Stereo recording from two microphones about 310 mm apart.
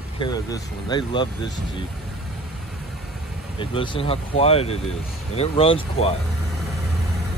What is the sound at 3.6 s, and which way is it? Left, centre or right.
Speech, centre.